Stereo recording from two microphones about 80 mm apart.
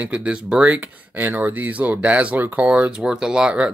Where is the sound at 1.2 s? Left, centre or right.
Right.